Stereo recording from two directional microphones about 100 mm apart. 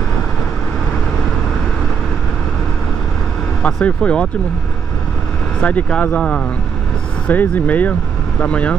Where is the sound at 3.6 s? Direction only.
10° left (ahead or behind).